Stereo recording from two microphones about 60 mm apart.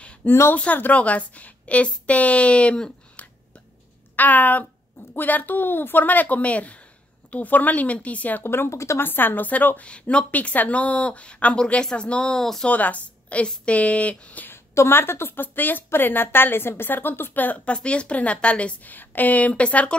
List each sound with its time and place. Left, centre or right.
0.0 s a sound: centre
0.7 s speech: left
4.2 s speech: left
8.5 s speech: left
9.0 s a woman's voice: left; by 12.6 s centre
12.6 s a woman's voice: left
14.5 s a sound: left
15.0 s a woman's voice: left